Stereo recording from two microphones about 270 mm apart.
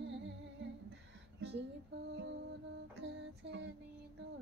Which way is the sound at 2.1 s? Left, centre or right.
Right.